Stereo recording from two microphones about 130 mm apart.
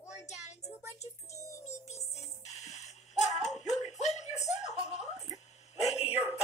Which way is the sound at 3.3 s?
65° left (ahead or behind).